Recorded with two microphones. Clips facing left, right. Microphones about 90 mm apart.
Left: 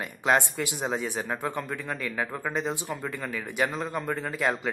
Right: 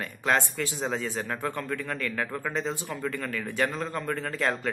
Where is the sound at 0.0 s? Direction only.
15° left (ahead or behind).